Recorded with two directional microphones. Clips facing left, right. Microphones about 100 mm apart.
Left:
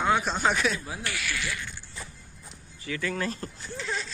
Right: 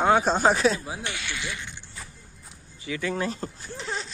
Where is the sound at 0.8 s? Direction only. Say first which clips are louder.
Right 1 dB; 20° right (ahead or behind).